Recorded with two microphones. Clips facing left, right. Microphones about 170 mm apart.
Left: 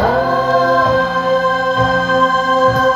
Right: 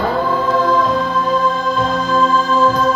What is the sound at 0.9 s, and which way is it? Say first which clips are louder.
Music: left 4 dB; 90° left.